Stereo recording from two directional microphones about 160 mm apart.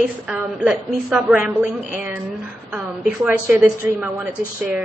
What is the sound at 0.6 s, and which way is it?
A woman's voice, 5° right (ahead or behind).